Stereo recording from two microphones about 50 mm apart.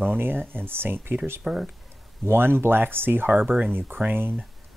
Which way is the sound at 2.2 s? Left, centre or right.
Right.